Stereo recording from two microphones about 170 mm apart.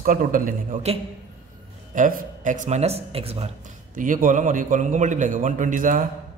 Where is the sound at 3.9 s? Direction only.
50° right (ahead or behind).